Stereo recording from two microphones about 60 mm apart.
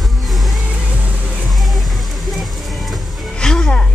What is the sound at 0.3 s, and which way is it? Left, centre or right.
Music, centre.